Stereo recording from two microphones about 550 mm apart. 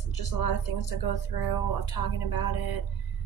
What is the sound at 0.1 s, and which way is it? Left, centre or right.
A woman's voice, left.